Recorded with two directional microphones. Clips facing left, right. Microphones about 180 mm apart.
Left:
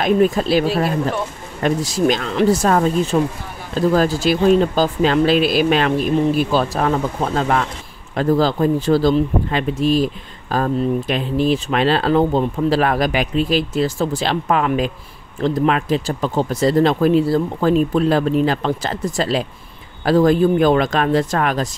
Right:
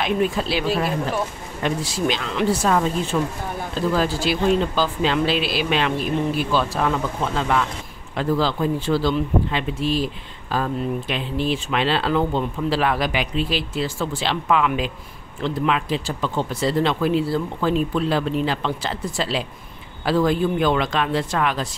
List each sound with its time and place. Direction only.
0.0 s speech: 45° left (ahead or behind)